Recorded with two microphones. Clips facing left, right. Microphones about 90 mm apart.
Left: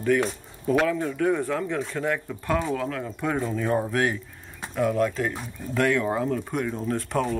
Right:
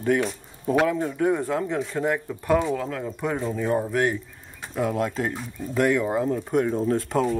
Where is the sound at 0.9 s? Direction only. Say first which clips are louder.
Right 1 dB; 25° right (ahead or behind).